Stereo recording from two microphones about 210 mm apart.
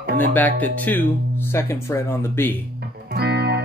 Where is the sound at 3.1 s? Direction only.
50° right (ahead or behind).